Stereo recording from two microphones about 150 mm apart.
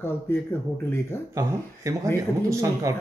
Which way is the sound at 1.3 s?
20° right (ahead or behind).